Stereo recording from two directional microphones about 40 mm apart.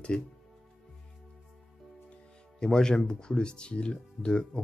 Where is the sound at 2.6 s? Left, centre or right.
Centre.